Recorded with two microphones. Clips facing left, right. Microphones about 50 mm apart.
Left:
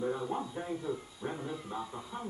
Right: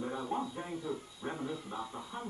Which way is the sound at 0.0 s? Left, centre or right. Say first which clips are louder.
Left 2 dB; centre.